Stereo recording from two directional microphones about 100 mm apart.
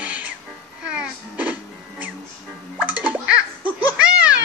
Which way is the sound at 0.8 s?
10° right (ahead or behind).